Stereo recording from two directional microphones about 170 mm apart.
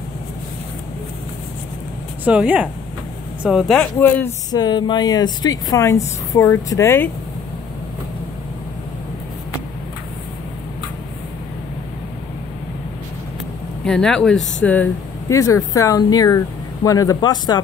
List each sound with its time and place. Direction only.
2.2 s speech: 5° right (ahead or behind)
4.5 s speech: 25° left (ahead or behind)
13.8 s speech: 5° left (ahead or behind); by 17.6 s 25° left (ahead or behind)